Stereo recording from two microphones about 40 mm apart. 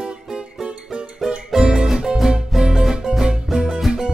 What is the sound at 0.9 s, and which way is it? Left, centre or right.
Music, right.